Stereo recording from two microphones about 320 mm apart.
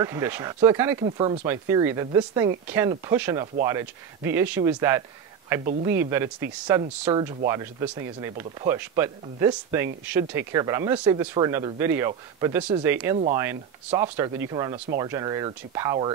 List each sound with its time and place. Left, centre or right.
0.0 s speech: centre